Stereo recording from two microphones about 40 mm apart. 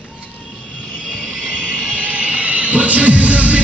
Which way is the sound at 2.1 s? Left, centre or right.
Right.